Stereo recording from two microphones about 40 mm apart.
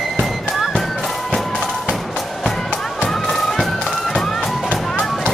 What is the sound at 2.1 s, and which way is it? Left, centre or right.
Music, centre.